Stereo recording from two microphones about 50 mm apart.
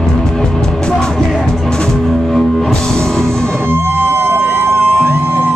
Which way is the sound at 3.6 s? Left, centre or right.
Right.